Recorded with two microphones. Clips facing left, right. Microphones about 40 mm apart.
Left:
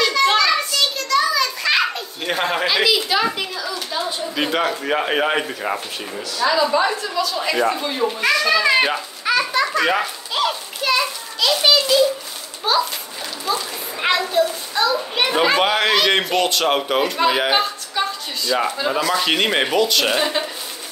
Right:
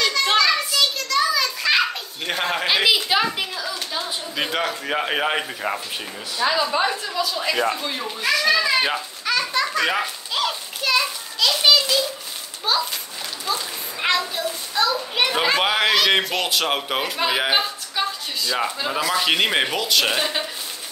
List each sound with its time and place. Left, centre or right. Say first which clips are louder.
0.0 s children playing: left 3 dB; centre
0.7 s a sound: left 2 dB; centre
2.6 s a child's voice: right 1 dB; centre
6.3 s a child's voice: left 2 dB; centre
6.9 s speech: left 3 dB; centre
8.8 s a sound: left 3 dB; centre
12.7 s children playing: left 4 dB; centre
14.0 s a child's voice: left 5 dB; centre